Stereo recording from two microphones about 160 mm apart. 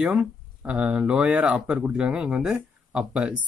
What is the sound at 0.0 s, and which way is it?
Speech, 10° right (ahead or behind).